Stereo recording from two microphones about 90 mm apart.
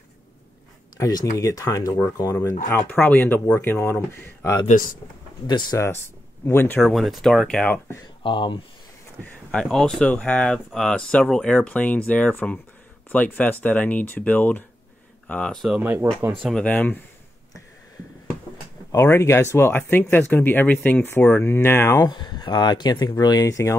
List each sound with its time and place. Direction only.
0.9 s speech: 40° left (ahead or behind)
2.3 s speech: 25° left (ahead or behind)
5.7 s speech: 30° left (ahead or behind)
6.8 s speech: centre (ahead or behind)
8.2 s speech: 65° left (ahead or behind)
9.2 s speech: 10° left (ahead or behind)
10.0 s speech: 15° left (ahead or behind)
15.8 s speech: 20° right (ahead or behind)
16.5 s speech: 15° left (ahead or behind)
18.9 s speech: 30° left (ahead or behind)
22.0 s speech: 55° left (ahead or behind); by 23.8 s 35° left (ahead or behind)